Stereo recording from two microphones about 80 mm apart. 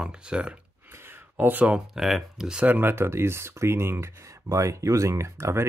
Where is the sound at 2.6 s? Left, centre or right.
Right.